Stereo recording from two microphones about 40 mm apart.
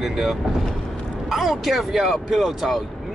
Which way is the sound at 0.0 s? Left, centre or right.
Centre.